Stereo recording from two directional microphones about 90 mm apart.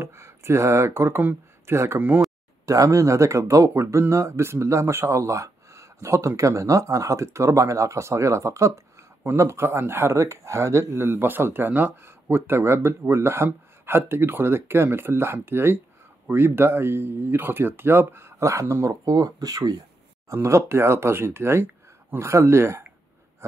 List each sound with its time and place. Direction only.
0.0 s speech: 30° right (ahead or behind)
2.6 s speech: 35° right (ahead or behind)
19.0 s speech: 45° right (ahead or behind)
20.4 s speech: 30° right (ahead or behind)